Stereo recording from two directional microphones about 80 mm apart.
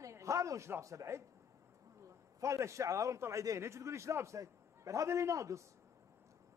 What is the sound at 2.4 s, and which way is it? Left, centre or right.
A man's voice, right.